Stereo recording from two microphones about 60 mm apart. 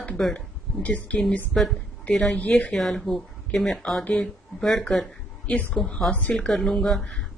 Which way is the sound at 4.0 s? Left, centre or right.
Centre.